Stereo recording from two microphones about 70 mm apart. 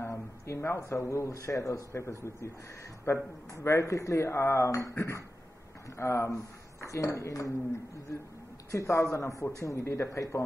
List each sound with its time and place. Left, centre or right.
0.0 s speech: left
8.7 s speech: left